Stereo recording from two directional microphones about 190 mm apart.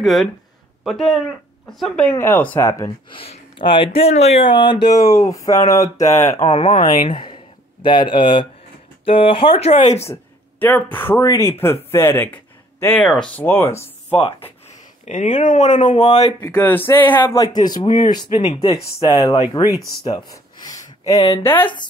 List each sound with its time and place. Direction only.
0.0 s speech: centre (ahead or behind)
6.4 s speech: 35° left (ahead or behind)
7.1 s speech: 25° left (ahead or behind)
10.6 s speech: 10° left (ahead or behind)
15.0 s speech: 40° left (ahead or behind)
16.1 s speech: 20° left (ahead or behind)